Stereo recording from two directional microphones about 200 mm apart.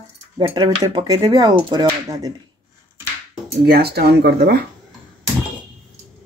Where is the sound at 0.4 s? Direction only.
20° right (ahead or behind).